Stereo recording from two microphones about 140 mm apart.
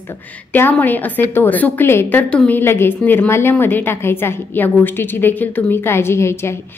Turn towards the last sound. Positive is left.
turn(degrees=20)  # may be behind; listen again after turning